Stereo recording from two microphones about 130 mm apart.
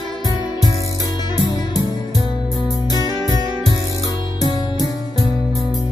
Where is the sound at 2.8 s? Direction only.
30° left (ahead or behind).